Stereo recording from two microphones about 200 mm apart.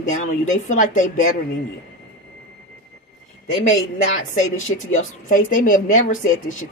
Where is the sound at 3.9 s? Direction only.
40° left (ahead or behind).